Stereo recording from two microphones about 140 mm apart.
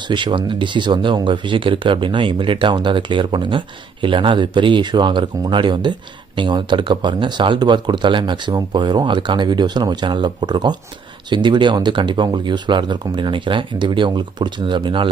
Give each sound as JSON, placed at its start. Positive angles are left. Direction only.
{"t": 0.0, "sound": "speech", "side_deg": -35}